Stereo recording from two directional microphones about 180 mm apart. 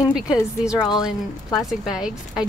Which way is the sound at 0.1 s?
5° right (ahead or behind).